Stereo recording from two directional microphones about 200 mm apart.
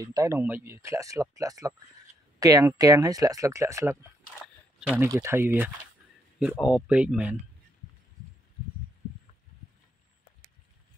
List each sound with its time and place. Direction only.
0.0 s speech: 15° right (ahead or behind)
4.7 s a sound: 5° right (ahead or behind)
5.0 s speech: 15° right (ahead or behind)